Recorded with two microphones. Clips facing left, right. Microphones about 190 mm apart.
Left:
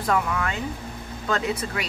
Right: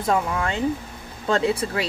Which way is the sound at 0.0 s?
25° right (ahead or behind).